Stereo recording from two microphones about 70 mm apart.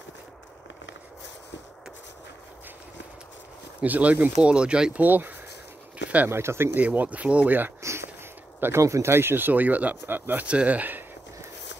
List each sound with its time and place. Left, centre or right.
3.8 s speech: right
5.0 s speech: right
6.0 s a sound: right
6.3 s speech: right
6.8 s speech: right
7.8 s a sound: right
8.5 s speech: right
8.8 s speech: right